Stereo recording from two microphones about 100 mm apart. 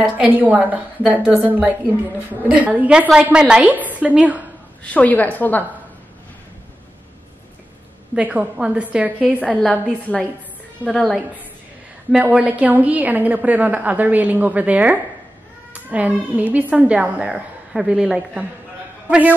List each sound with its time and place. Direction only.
0.2 s a woman's voice: 15° right (ahead or behind)
4.8 s a woman's voice: 15° left (ahead or behind)
8.1 s a woman's voice: 10° right (ahead or behind)
9.6 s a woman's voice: centre (ahead or behind)
12.1 s a woman's voice: 10° right (ahead or behind)